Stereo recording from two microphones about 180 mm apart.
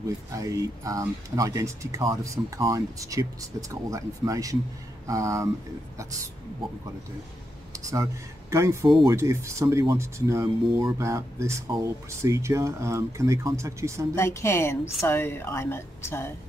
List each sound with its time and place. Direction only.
0.3 s speech: 20° right (ahead or behind)
7.7 s speech: 20° right (ahead or behind)
14.1 s a woman's voice: 15° left (ahead or behind)